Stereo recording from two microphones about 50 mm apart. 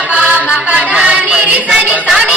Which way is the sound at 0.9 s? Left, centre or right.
Centre.